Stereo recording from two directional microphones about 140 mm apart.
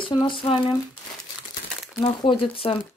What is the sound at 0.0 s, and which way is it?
Speech, 35° left (ahead or behind).